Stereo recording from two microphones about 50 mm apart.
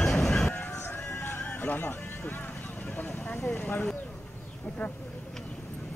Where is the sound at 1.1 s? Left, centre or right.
Left.